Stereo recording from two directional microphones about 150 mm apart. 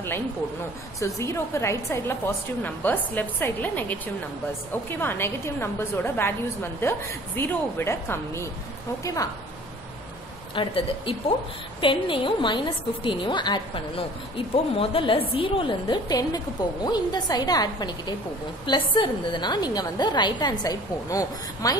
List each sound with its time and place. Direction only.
0.9 s a woman's voice: 20° left (ahead or behind)
10.5 s a woman's voice: 35° left (ahead or behind)